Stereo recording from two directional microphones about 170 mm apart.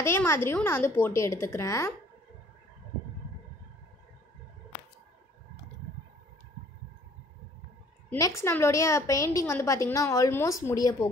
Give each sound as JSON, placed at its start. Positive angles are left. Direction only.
{"t": 0.0, "sound": "a woman's voice", "side_deg": 15}
{"t": 8.1, "sound": "a woman's voice", "side_deg": 15}